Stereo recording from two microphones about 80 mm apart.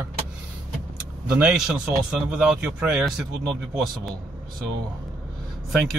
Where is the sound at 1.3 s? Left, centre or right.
Centre.